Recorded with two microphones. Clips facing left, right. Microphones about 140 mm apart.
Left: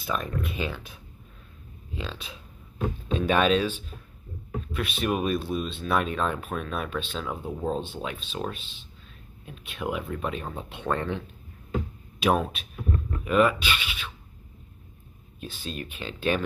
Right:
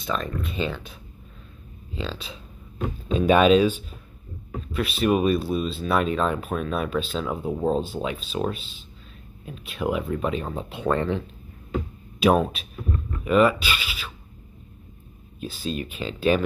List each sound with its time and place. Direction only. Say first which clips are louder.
0.0 s speech: right 2 dB; 5° left (ahead or behind)
2.0 s speech: right 4 dB; centre (ahead or behind)
7.6 s speech: right 5 dB; 35° right (ahead or behind)
8.3 s speech: right 6 dB; 5° right (ahead or behind)
15.4 s speech: right 6 dB; 5° right (ahead or behind)